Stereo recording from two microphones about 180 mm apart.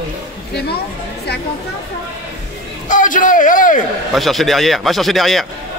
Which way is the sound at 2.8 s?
45° left (ahead or behind).